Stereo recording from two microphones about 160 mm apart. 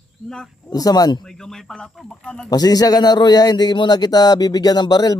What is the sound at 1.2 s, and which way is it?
Speech, 5° left (ahead or behind).